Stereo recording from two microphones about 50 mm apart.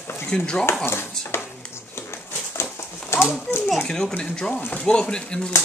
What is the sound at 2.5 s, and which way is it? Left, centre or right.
Horse, left.